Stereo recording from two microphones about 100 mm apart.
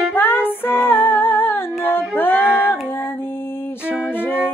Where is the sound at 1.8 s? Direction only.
20° left (ahead or behind).